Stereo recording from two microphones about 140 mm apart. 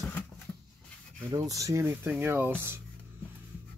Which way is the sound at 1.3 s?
25° right (ahead or behind).